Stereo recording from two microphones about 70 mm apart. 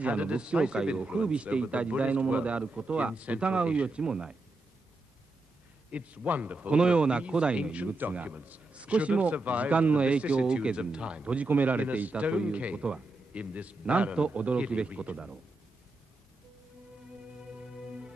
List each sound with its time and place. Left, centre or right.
0.0 s a man's voice: centre
5.9 s a man's voice: centre